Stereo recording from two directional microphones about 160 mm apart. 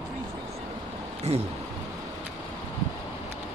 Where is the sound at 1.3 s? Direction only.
40° right (ahead or behind).